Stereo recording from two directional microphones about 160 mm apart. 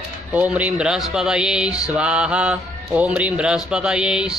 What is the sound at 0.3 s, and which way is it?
Speech, 10° right (ahead or behind).